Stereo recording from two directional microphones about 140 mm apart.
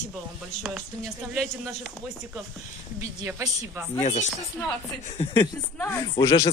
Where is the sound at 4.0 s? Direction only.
50° left (ahead or behind).